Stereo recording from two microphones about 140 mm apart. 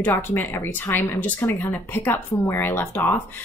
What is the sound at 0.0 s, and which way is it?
Speech, 15° left (ahead or behind).